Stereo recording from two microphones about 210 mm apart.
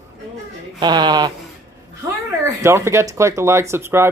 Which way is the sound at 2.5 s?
15° right (ahead or behind).